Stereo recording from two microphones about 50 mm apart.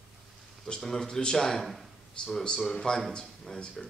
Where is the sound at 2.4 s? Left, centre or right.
Centre.